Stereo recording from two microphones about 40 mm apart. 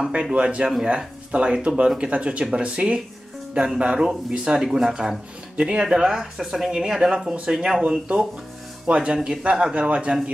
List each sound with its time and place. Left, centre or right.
0.1 s a man's voice: right